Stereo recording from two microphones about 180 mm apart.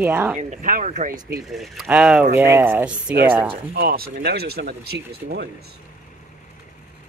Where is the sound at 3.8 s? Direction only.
55° right (ahead or behind).